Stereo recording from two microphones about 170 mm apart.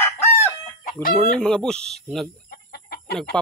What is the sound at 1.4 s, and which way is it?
Speech, 5° left (ahead or behind).